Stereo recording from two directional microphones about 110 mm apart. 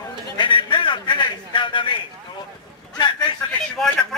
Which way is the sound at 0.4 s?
50° left (ahead or behind).